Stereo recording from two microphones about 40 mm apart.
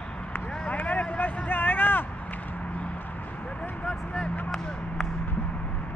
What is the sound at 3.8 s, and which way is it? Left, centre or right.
Speech, left.